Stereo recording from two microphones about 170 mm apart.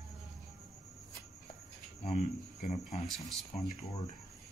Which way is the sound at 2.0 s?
45° left (ahead or behind).